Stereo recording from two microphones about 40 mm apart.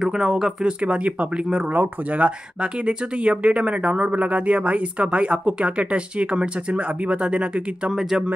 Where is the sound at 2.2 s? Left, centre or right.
Right.